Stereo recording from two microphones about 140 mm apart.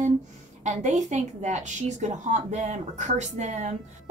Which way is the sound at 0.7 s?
55° right (ahead or behind).